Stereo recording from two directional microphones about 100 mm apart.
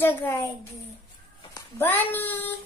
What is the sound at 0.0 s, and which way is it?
Speech, 25° left (ahead or behind).